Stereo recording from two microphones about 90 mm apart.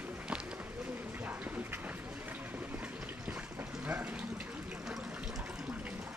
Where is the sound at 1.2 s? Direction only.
20° right (ahead or behind).